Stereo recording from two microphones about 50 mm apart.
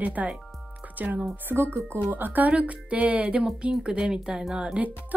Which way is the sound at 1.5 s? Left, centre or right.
Right.